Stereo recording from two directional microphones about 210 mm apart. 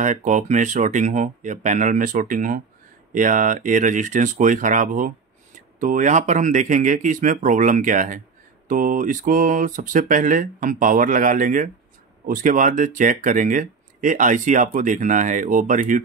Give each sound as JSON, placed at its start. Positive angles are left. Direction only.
{"t": 0.0, "sound": "speech", "side_deg": -35}